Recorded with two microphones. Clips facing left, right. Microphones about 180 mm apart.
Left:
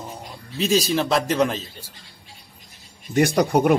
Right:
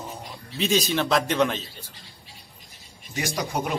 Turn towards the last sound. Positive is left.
turn(degrees=55)  # may be behind; listen again after turning